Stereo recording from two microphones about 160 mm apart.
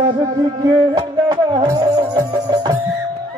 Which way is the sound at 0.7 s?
30° right (ahead or behind).